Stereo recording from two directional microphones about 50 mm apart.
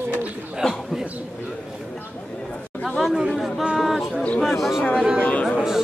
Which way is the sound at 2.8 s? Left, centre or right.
Centre.